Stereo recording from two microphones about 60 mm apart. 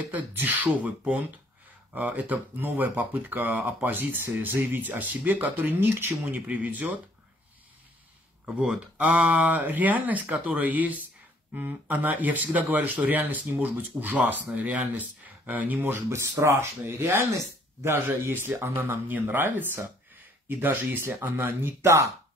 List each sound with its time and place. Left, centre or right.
0.1 s speech: right
8.5 s speech: centre
15.9 s speech: right
18.6 s speech: right
19.0 s speech: right
21.4 s speech: right